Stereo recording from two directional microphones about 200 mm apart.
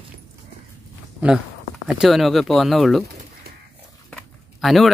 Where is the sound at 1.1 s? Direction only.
5° right (ahead or behind).